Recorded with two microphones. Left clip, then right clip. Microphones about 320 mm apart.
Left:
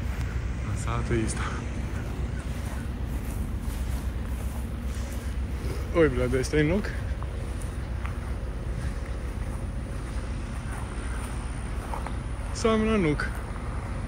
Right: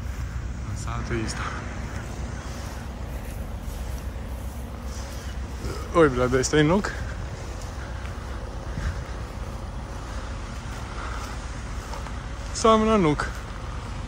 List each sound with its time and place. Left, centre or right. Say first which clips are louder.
0.8 s speech: left 1 dB; centre
5.9 s speech: right 4 dB; centre
12.6 s speech: right 6 dB; centre